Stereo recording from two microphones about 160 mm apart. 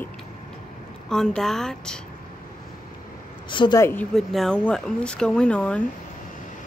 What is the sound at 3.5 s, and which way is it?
Speech, 30° left (ahead or behind).